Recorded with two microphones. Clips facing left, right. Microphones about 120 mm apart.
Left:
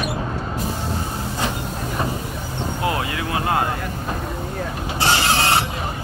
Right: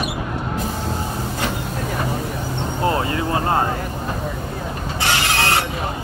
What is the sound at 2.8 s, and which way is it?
Vehicle, 35° right (ahead or behind).